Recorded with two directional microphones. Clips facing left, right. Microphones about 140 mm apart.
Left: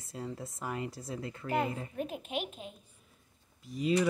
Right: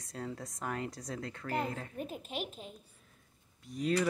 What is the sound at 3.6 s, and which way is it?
Speech, centre (ahead or behind).